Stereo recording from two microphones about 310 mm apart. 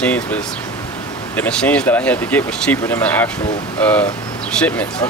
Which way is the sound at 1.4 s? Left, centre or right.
Centre.